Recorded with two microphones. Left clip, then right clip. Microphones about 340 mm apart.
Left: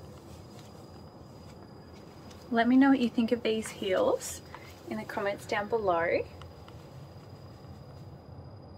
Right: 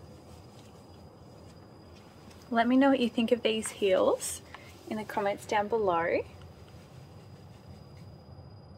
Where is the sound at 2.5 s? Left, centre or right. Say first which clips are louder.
Even; centre.